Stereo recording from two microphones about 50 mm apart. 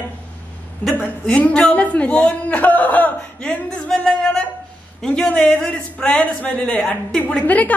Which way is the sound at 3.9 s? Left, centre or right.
Centre.